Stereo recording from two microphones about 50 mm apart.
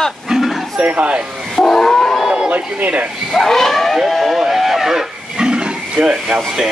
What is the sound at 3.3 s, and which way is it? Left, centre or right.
Speech, centre.